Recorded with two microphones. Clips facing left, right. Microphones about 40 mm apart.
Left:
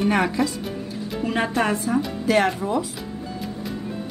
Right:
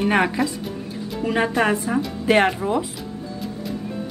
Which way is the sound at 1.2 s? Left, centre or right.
Centre.